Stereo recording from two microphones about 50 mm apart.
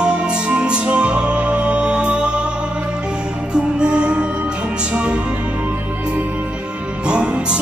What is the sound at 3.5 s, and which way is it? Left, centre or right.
Music, centre.